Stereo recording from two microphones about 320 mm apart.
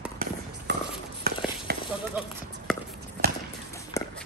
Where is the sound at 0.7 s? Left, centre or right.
Right.